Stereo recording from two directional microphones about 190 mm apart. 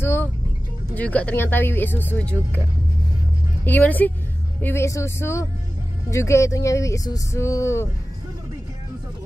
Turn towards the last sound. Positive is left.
turn(degrees=15)  # may be behind; listen again after turning